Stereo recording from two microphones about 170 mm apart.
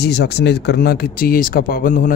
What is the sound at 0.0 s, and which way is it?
Speech, 75° left (ahead or behind).